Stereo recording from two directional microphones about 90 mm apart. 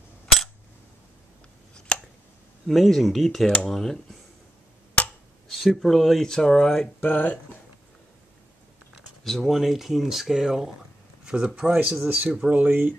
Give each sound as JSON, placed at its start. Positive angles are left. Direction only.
{"t": 2.7, "sound": "speech", "side_deg": 0}
{"t": 5.5, "sound": "speech", "side_deg": 0}
{"t": 7.0, "sound": "speech", "side_deg": 20}
{"t": 8.9, "sound": "speech", "side_deg": 0}
{"t": 12.3, "sound": "speech", "side_deg": -5}
{"t": 12.5, "sound": "speech", "side_deg": -20}